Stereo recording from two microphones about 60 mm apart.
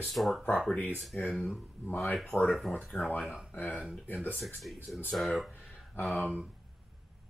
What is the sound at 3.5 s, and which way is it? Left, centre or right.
Speech, left.